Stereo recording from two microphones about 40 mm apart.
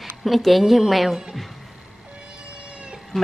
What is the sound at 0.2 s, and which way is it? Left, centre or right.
Speech, centre.